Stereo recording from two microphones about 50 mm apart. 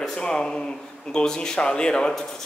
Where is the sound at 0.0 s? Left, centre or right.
Centre.